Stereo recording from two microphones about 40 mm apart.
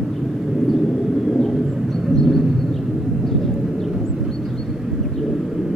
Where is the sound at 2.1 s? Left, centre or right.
Centre.